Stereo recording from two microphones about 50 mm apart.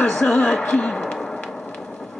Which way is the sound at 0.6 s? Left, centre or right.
Centre.